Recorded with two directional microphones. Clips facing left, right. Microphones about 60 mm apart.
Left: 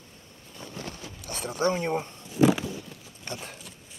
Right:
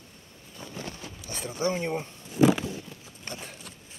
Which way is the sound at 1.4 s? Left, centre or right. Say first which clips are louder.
Left 3 dB; left.